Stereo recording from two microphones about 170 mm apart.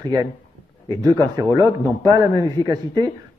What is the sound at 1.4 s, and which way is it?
A man's voice, 20° right (ahead or behind).